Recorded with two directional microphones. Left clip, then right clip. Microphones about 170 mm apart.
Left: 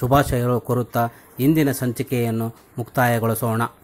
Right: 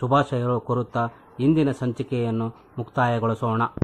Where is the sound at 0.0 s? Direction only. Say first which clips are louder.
Left 3 dB; 25° left (ahead or behind).